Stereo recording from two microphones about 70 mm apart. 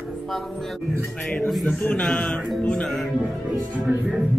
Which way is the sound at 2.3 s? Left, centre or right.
Centre.